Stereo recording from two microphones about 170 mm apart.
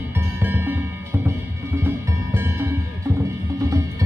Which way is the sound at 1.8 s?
15° right (ahead or behind).